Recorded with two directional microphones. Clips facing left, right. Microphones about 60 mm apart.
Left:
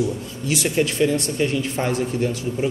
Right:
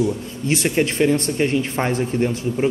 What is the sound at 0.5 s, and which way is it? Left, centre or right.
Speech, right.